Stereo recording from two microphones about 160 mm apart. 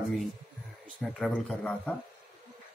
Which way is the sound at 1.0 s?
5° left (ahead or behind).